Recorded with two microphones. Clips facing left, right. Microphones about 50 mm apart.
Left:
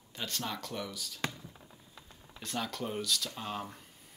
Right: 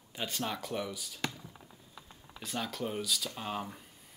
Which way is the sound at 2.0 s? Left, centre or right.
Centre.